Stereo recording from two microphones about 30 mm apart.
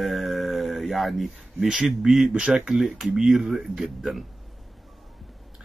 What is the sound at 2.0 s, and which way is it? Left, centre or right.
Speech, centre.